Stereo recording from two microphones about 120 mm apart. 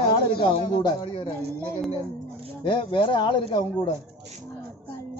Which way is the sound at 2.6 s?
45° left (ahead or behind).